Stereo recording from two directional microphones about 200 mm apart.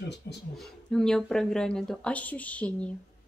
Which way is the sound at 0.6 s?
Centre (ahead or behind).